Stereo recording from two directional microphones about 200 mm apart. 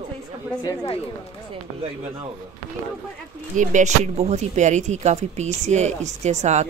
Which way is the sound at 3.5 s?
40° right (ahead or behind).